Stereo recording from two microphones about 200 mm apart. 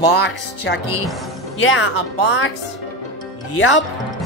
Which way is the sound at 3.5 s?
75° left (ahead or behind).